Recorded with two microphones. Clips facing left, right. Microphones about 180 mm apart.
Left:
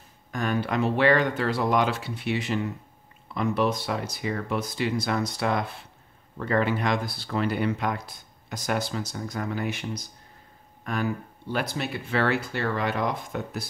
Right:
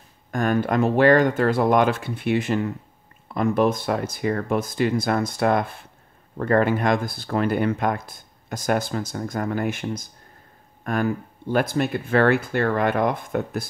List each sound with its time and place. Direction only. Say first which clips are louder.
0.3 s speech: right 5 dB; 50° right (ahead or behind)